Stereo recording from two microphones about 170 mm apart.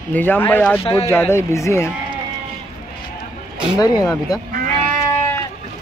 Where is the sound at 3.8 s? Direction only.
20° left (ahead or behind).